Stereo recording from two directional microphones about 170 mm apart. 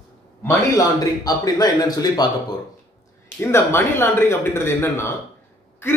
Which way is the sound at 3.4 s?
15° left (ahead or behind).